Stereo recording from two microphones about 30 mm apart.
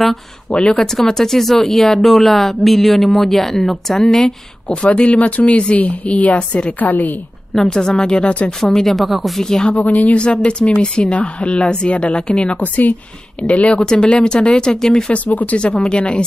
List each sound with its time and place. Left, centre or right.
0.5 s speech: left
0.9 s a woman's voice: centre
4.6 s speech: left
6.8 s a woman's voice: left
7.6 s a woman's voice: left
8.2 s a woman's voice: left
8.8 s speech: centre
9.4 s a woman's voice: centre
9.7 s a woman's voice: left
12.5 s a woman's voice: left
13.4 s speech: left
13.8 s a woman's voice: left
15.1 s speech: left
15.5 s a woman's voice: left